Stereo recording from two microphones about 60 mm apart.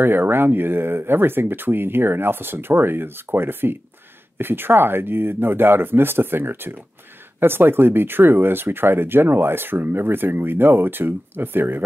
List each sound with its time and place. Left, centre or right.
0.0 s speech: right